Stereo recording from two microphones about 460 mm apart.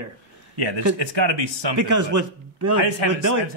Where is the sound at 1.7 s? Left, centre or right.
Right.